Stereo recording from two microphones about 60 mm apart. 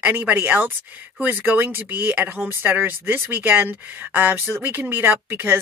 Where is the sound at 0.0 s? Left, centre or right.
Right.